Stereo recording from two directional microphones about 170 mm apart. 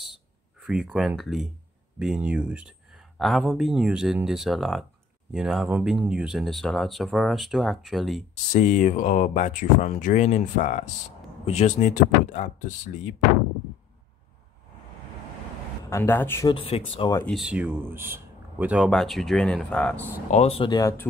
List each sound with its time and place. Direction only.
0.7 s speech: 5° right (ahead or behind)
8.5 s speech: 45° left (ahead or behind)
15.9 s speech: 15° left (ahead or behind)
16.4 s speech: 30° left (ahead or behind)
17.2 s speech: centre (ahead or behind)
20.2 s speech: 40° left (ahead or behind)